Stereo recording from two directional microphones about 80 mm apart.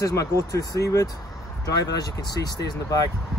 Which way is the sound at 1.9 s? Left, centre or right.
Left.